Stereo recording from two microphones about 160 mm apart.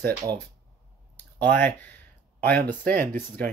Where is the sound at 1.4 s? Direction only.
10° left (ahead or behind).